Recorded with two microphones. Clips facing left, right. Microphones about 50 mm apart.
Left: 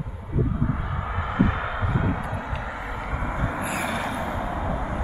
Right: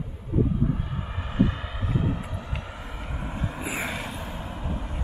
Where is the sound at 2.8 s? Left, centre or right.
Left.